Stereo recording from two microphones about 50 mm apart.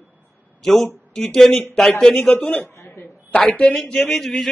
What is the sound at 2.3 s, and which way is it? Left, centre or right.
Speech, left.